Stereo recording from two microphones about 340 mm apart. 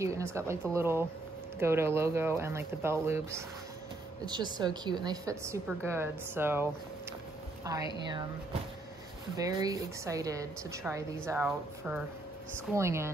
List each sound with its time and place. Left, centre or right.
0.0 s a woman's voice: centre
9.6 s a woman's voice: centre